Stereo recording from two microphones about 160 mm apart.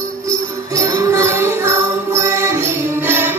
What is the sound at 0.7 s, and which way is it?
Jingle bell, 20° right (ahead or behind).